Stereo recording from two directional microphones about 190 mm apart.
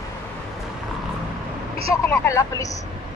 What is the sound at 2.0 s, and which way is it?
Vehicle, 10° left (ahead or behind).